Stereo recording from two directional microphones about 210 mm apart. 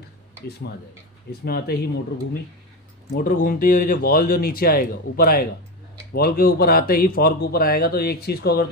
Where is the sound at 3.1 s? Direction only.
40° left (ahead or behind).